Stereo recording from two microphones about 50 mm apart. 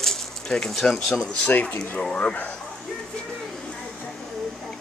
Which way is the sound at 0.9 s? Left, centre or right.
Centre.